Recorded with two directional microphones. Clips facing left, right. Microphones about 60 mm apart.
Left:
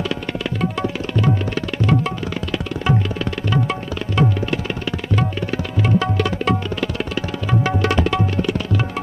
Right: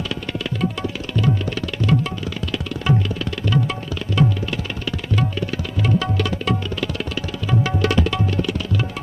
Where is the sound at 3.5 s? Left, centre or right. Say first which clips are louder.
Right 1 dB; left.